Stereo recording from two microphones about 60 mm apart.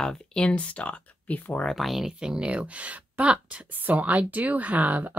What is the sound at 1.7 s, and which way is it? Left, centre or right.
Speech, centre.